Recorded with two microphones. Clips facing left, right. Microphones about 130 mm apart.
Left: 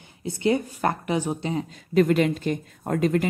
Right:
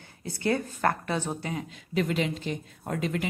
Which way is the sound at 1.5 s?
35° left (ahead or behind).